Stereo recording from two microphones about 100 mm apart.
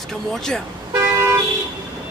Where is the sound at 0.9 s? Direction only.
30° right (ahead or behind).